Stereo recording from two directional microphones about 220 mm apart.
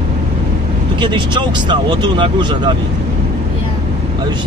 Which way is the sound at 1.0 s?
20° right (ahead or behind).